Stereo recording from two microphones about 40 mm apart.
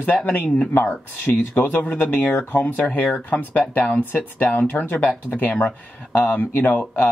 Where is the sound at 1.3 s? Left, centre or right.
Left.